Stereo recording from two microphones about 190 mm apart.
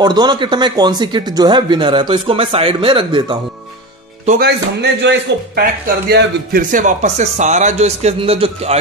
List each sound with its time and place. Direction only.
0.0 s speech: 20° right (ahead or behind)
4.3 s speech: 60° right (ahead or behind); by 8.7 s 30° right (ahead or behind)